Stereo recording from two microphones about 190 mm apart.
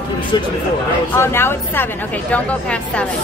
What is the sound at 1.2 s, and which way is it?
A woman's voice, 10° left (ahead or behind).